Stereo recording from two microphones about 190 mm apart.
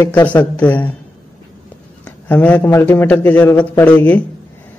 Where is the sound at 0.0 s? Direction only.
10° left (ahead or behind).